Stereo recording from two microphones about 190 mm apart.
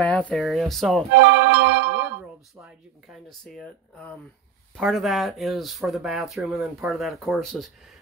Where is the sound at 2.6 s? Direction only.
15° right (ahead or behind).